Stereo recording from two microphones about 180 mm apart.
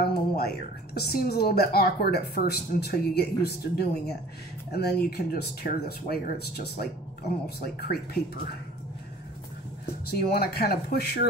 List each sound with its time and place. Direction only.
0.0 s a woman's voice: 60° left (ahead or behind)
10.0 s a woman's voice: 60° left (ahead or behind)